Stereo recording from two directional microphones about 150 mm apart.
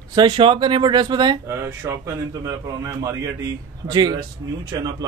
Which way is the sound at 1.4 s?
20° right (ahead or behind).